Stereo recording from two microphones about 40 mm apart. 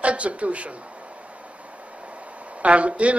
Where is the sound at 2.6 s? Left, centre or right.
Right.